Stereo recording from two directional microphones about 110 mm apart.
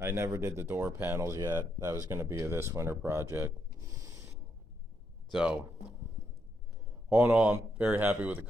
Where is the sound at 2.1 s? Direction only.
20° right (ahead or behind).